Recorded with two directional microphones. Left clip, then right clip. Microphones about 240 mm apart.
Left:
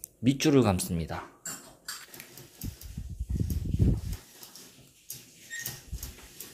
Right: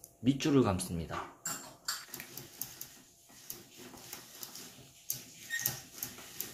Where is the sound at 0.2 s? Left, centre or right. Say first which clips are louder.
Left 5 dB; left.